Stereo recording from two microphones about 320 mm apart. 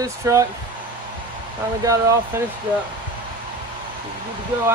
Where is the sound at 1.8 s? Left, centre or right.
Centre.